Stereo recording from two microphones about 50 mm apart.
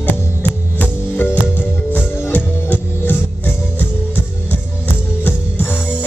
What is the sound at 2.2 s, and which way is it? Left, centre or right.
Music, left.